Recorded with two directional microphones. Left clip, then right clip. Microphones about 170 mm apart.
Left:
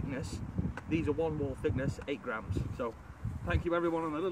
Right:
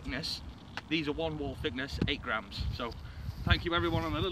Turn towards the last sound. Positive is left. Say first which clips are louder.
# even
turn(degrees=-10)  # may be behind; listen again after turning